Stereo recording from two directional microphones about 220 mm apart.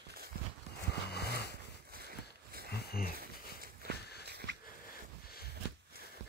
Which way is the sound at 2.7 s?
45° left (ahead or behind).